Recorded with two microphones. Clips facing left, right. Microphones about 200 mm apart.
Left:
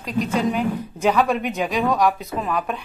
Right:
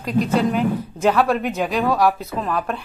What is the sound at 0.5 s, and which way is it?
A woman's voice, 10° left (ahead or behind).